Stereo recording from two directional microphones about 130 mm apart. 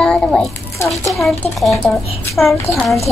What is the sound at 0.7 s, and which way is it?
Speech, 20° left (ahead or behind).